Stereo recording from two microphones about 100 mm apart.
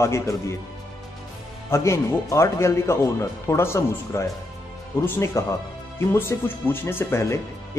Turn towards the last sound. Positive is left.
turn(degrees=25)  # may be behind; listen again after turning